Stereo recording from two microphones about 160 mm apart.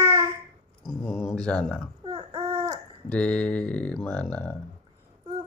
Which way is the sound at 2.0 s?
25° right (ahead or behind).